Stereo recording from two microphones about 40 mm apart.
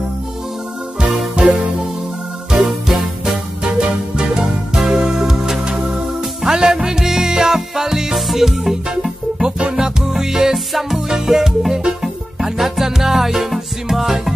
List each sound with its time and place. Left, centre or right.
1.4 s music: right
2.5 s music: centre
4.7 s music: centre